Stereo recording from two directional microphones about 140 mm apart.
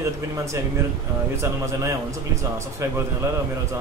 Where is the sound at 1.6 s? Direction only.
20° right (ahead or behind).